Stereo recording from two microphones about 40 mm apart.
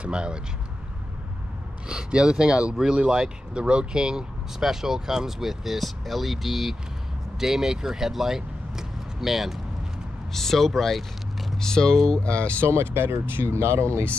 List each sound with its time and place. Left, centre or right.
0.0 s speech: right
1.9 s speech: right; by 9.6 s centre
10.3 s speech: centre
12.1 s speech: left
12.9 s speech: right